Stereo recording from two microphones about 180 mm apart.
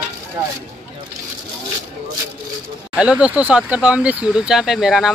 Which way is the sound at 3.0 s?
5° right (ahead or behind).